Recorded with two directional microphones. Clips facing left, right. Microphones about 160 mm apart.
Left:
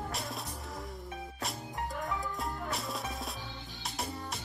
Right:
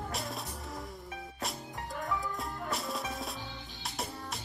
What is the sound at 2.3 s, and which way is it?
Music, centre (ahead or behind).